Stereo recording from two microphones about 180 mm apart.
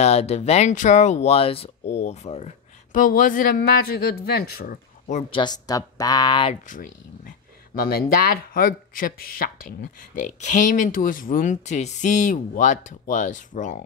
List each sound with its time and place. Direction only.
0.0 s speech: 35° left (ahead or behind)
5.3 s speech: 25° left (ahead or behind)
6.7 s speech: 50° left (ahead or behind)